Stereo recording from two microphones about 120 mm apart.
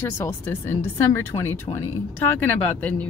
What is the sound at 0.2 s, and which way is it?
Speech, 20° left (ahead or behind).